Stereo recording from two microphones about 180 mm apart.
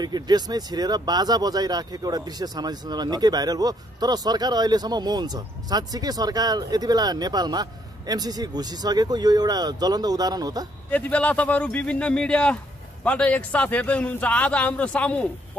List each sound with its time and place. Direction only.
0.0 s speech: 20° right (ahead or behind)
10.9 s speech: 10° left (ahead or behind)